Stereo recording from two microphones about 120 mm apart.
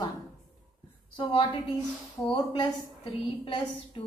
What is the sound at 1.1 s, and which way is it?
Speech, 45° left (ahead or behind).